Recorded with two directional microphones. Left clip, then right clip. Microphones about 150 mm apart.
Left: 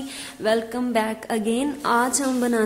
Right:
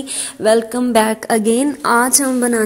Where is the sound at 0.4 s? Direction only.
45° right (ahead or behind).